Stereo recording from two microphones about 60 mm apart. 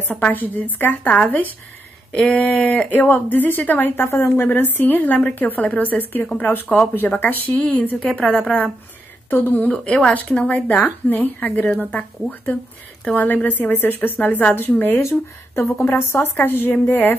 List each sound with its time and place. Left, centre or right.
0.1 s a woman's voice: left
2.1 s speech: left
4.5 s a woman's voice: left
9.3 s a woman's voice: left